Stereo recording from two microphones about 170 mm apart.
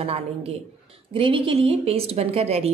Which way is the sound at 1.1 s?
30° right (ahead or behind).